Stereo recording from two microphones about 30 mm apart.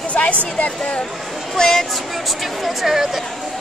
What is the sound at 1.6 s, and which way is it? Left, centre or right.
Speech, centre.